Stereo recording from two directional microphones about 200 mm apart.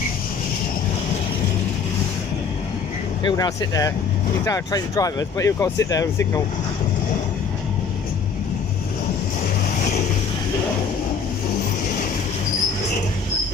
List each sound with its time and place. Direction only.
3.3 s speech: 20° left (ahead or behind)